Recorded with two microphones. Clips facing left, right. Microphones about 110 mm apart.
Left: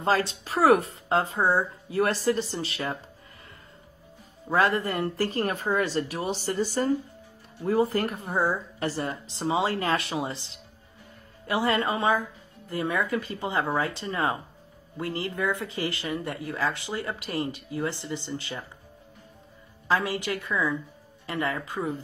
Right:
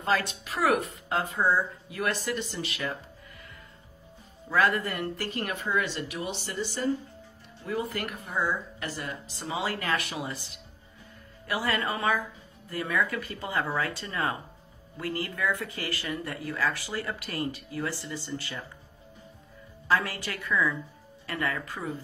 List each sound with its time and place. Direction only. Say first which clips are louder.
0.0 s speech: left 3 dB; 30° left (ahead or behind)
4.5 s speech: left 2 dB; 30° left (ahead or behind)
19.9 s speech: left 2 dB; 20° left (ahead or behind)